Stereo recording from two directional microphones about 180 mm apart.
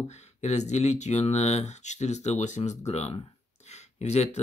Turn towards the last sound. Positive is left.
turn(degrees=35)  # may be behind; listen again after turning